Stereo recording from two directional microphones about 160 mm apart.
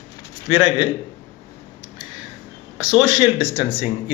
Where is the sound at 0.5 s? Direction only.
35° left (ahead or behind).